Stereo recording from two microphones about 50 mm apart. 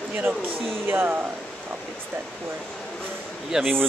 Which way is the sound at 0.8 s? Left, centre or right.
Right.